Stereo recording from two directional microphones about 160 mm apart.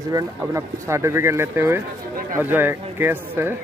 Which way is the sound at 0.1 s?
15° right (ahead or behind).